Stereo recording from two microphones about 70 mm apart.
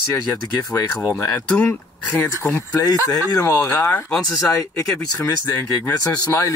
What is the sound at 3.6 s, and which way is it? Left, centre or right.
Speech, left.